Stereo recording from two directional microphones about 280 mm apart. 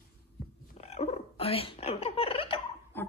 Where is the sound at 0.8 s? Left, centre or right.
Left.